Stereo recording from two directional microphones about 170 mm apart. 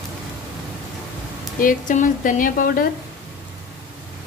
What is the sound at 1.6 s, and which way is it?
Speech, 50° left (ahead or behind).